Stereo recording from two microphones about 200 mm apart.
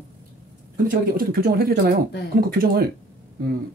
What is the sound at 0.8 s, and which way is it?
Speech, 45° right (ahead or behind).